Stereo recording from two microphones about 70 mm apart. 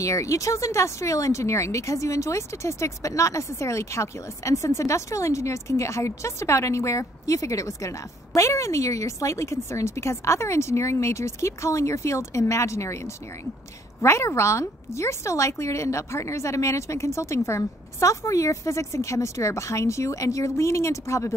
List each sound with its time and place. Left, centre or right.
0.0 s speech: left